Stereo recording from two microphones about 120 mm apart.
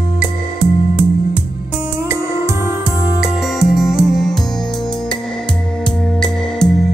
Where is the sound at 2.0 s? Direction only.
25° right (ahead or behind).